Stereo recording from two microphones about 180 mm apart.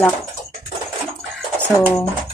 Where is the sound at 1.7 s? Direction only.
15° left (ahead or behind).